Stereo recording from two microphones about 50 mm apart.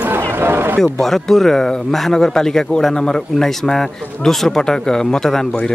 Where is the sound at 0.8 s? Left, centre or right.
Centre.